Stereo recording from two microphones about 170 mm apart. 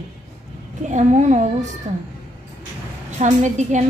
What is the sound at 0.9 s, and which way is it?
Speech, 45° right (ahead or behind).